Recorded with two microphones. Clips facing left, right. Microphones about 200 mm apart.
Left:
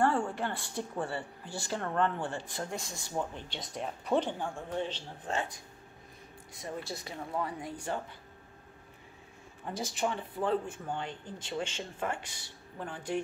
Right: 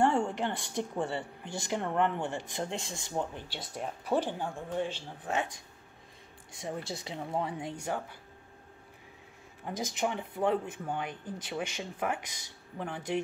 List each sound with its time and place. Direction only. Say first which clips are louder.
0.0 s a woman's voice: right 2 dB; 15° right (ahead or behind)
3.3 s a woman's voice: even; 5° right (ahead or behind)
6.6 s speech: right 2 dB; 25° right (ahead or behind)
9.7 s a woman's voice: right 1 dB; 15° right (ahead or behind)